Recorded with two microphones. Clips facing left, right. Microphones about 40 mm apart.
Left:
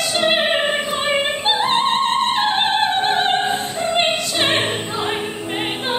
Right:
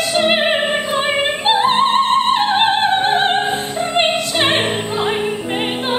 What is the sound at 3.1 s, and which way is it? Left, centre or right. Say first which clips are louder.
Music: right 2 dB; right.